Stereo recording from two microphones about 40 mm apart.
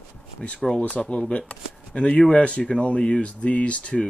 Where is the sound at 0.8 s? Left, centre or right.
Left.